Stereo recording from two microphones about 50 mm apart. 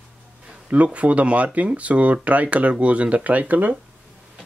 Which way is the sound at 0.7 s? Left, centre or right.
Right.